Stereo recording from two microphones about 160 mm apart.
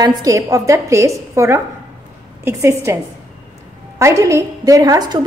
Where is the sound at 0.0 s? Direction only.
20° right (ahead or behind).